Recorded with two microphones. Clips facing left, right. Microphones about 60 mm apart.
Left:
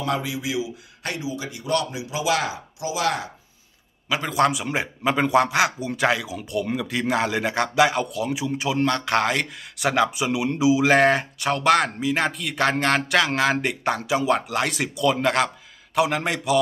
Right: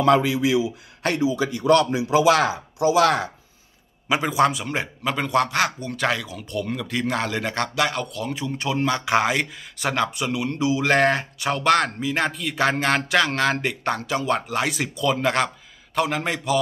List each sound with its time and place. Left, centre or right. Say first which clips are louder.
0.0 s speech: right 8 dB; right
4.1 s a man's voice: right 3 dB; right
4.5 s a man's voice: left 1 dB; centre